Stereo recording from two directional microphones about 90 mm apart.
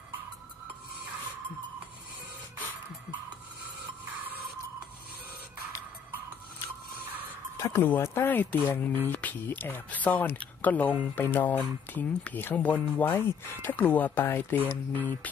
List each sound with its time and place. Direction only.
7.5 s speech: 25° left (ahead or behind)